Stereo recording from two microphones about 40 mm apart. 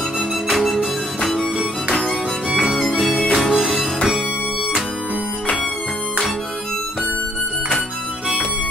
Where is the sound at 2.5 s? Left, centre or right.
Centre.